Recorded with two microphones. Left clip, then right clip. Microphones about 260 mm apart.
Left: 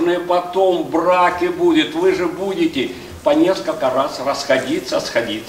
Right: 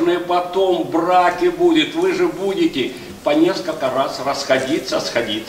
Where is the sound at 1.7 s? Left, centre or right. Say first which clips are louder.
Left 1 dB; left.